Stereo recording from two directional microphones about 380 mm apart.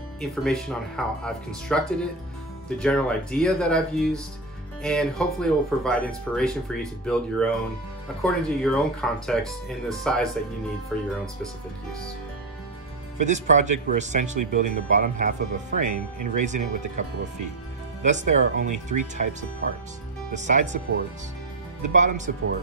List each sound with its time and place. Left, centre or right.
0.2 s speech: centre
13.2 s speech: centre
20.3 s speech: centre
21.8 s speech: centre